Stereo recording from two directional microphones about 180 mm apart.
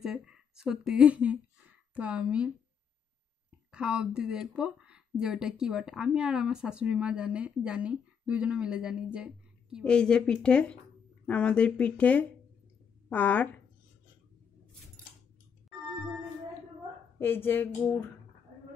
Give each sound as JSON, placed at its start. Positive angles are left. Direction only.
{"t": 0.0, "sound": "speech", "side_deg": -5}
{"t": 3.7, "sound": "speech", "side_deg": -5}
{"t": 17.2, "sound": "speech", "side_deg": 10}